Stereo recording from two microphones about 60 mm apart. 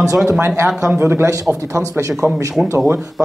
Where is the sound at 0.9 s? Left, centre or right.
Right.